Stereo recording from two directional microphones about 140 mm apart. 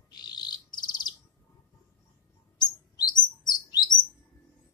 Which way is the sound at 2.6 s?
30° left (ahead or behind).